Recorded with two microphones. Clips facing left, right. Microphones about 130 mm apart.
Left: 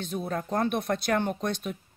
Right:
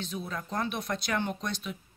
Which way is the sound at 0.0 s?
55° left (ahead or behind).